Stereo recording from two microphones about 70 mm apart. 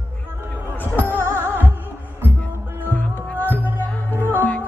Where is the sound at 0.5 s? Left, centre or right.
Left.